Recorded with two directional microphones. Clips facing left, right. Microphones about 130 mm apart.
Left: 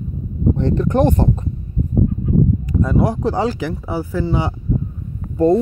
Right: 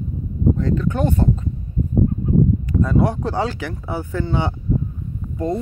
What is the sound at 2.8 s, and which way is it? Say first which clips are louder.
Speech: left 2 dB; 10° left (ahead or behind).